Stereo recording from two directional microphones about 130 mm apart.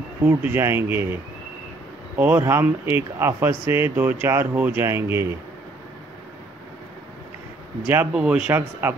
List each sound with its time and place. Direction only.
0.2 s speech: 15° right (ahead or behind)
8.1 s speech: 5° right (ahead or behind)